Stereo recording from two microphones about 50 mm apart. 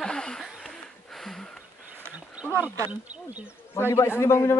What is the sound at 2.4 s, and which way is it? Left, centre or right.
Wild animals, right.